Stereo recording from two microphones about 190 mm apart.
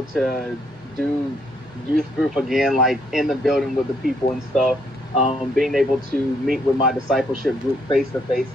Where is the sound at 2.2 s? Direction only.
Centre (ahead or behind).